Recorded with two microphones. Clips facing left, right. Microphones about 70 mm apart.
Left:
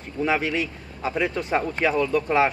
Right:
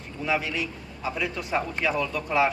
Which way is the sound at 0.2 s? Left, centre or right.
Left.